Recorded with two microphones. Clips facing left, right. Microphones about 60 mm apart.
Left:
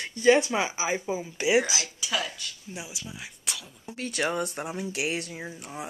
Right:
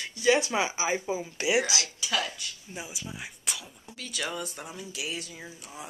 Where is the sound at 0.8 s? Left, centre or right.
Centre.